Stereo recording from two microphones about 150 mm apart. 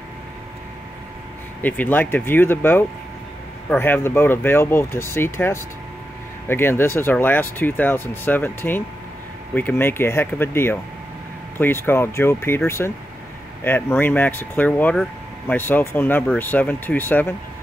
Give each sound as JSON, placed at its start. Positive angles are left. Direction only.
{"t": 1.6, "sound": "speech", "side_deg": 10}